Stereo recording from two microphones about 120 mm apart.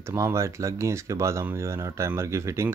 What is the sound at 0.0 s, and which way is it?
Speech, 25° right (ahead or behind).